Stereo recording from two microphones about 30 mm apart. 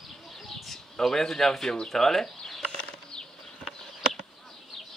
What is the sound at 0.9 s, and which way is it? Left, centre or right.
A man's voice, centre.